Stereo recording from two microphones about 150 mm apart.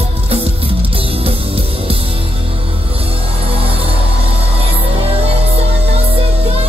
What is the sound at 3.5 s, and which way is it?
Music, 40° right (ahead or behind).